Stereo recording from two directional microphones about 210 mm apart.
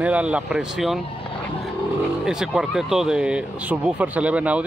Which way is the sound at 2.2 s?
Centre (ahead or behind).